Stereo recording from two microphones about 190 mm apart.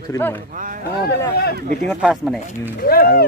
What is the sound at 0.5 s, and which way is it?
Speech, 45° right (ahead or behind).